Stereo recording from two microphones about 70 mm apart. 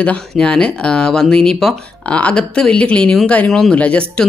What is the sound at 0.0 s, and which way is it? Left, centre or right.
Speech, centre.